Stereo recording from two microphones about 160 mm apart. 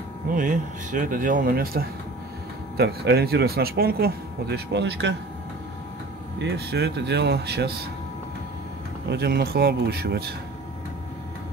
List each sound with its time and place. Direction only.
0.3 s speech: 55° right (ahead or behind); by 1.9 s 70° right (ahead or behind)
2.8 s speech: 80° right
6.4 s speech: 90° right
9.1 s speech: 90° right